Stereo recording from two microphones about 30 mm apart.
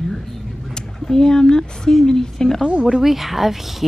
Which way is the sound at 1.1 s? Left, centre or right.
Centre.